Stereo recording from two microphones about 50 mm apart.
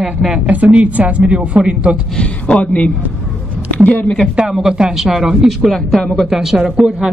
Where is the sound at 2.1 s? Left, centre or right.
Left.